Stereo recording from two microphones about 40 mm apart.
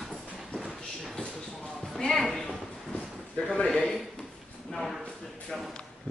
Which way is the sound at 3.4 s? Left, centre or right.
Left.